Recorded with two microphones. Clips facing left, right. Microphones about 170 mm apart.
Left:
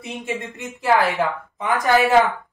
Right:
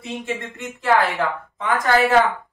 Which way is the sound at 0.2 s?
20° left (ahead or behind).